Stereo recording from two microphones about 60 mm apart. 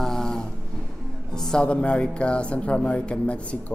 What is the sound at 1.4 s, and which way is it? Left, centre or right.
Speech, centre.